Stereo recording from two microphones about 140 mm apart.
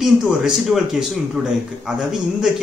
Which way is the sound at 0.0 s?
5° right (ahead or behind).